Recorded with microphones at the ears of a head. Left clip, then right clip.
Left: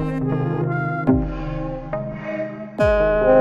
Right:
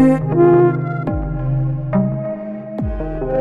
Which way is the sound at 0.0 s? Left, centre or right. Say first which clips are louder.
Right 12 dB; right.